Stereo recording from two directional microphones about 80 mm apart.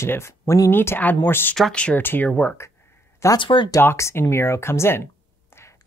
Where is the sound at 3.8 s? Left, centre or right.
Left.